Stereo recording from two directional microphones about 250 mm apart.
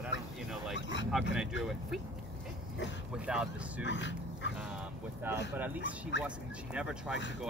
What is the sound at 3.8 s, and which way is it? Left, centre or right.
Speech, left.